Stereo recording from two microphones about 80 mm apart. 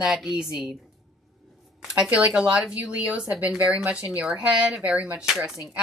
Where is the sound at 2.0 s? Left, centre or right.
Centre.